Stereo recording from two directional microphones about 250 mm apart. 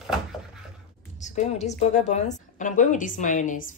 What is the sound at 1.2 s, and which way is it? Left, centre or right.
A woman's voice, left.